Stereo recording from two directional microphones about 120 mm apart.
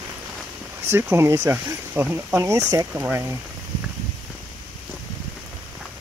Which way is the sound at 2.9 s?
15° right (ahead or behind).